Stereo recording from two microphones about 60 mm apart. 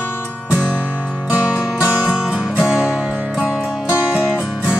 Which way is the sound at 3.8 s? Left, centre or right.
Right.